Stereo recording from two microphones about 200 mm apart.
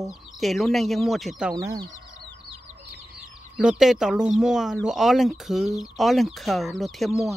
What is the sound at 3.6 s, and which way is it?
Speech, 5° right (ahead or behind).